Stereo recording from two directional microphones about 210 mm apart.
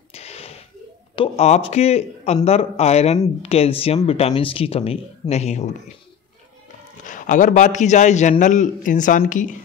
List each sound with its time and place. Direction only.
0.1 s a sound: 30° left (ahead or behind)
1.1 s speech: 25° left (ahead or behind)
7.1 s a man's voice: 35° left (ahead or behind)